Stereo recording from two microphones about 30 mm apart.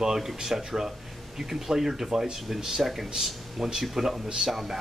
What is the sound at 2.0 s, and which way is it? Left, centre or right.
Speech, right.